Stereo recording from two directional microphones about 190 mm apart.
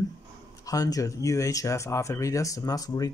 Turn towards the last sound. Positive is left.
turn(degrees=20)  # may be behind; listen again after turning